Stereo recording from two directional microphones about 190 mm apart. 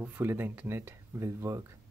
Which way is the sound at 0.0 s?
10° right (ahead or behind).